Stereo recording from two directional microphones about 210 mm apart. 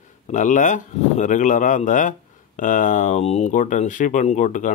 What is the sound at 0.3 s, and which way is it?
Speech, 35° left (ahead or behind).